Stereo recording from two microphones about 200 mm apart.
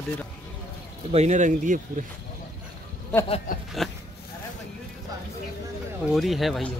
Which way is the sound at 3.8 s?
Centre (ahead or behind).